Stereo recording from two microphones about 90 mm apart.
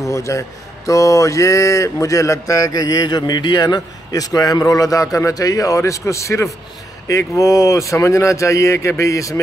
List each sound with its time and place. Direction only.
0.0 s speech: 35° left (ahead or behind)